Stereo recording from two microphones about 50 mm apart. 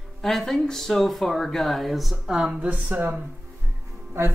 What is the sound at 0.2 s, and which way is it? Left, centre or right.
Speech, centre.